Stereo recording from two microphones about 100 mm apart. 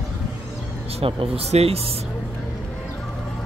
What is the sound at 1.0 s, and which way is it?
Speech, 80° right.